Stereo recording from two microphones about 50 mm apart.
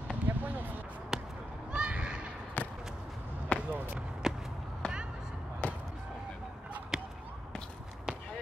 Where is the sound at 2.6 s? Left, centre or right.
Left.